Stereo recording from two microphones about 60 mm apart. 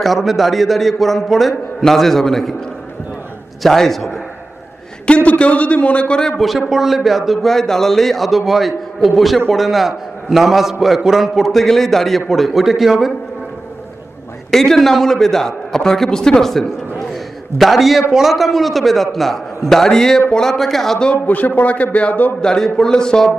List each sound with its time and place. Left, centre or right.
0.0 s a man's voice: centre
3.6 s a man's voice: centre
5.0 s a man's voice: left; by 13.1 s centre
14.5 s a man's voice: centre
21.1 s a man's voice: left
22.4 s a man's voice: centre